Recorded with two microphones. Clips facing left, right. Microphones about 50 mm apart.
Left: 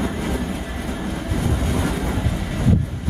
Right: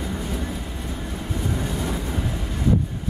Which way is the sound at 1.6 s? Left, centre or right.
Left.